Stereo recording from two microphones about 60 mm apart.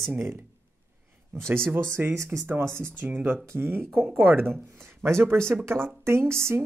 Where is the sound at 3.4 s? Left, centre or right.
Right.